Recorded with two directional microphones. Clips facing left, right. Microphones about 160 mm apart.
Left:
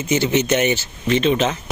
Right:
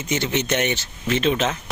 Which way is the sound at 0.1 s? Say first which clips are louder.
Left 5 dB; centre (ahead or behind).